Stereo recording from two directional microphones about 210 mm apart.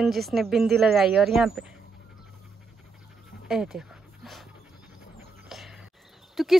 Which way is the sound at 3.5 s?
5° right (ahead or behind).